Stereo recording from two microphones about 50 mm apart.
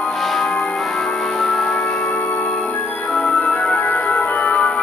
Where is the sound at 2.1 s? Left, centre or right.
Left.